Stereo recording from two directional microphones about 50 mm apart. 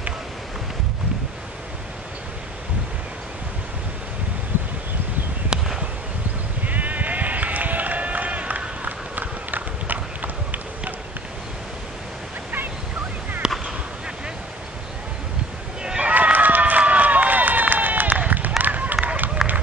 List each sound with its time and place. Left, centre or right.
5.5 s a sound: centre
6.6 s sheep: right
13.4 s fireworks: centre
16.0 s run: right